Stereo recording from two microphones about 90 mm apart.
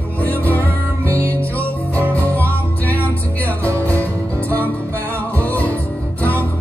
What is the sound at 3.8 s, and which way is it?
Music, 20° left (ahead or behind).